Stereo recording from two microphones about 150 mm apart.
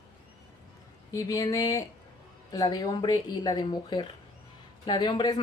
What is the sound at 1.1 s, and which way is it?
Speech, 25° left (ahead or behind).